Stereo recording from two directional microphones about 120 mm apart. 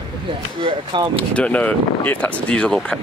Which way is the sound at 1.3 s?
10° left (ahead or behind).